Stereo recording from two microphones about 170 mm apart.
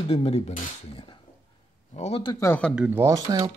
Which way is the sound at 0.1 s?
35° left (ahead or behind).